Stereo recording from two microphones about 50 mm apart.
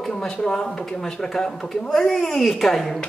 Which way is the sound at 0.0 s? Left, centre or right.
Centre.